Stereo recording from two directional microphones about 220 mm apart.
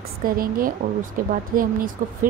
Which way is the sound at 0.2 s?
40° right (ahead or behind).